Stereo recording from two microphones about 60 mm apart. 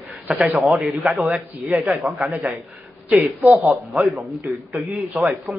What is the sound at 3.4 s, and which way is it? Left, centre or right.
Speech, centre.